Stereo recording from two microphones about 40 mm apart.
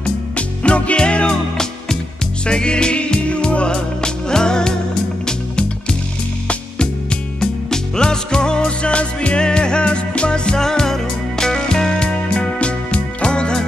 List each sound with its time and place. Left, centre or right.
0.0 s music: left
2.4 s music: left
7.3 s music: centre
12.1 s music: left